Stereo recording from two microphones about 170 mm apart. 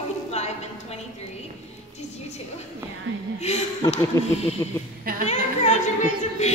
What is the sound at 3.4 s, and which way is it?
Speech, 40° left (ahead or behind).